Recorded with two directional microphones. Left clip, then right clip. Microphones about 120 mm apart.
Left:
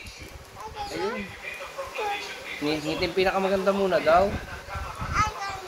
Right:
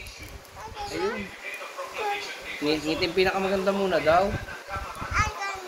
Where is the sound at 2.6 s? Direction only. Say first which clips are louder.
Right 1 dB; 30° left (ahead or behind).